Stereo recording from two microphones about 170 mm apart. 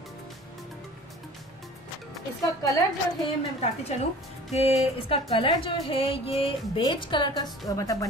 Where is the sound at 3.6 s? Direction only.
40° left (ahead or behind).